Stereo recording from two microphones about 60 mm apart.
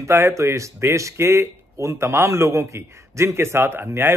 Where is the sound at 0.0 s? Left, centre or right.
Right.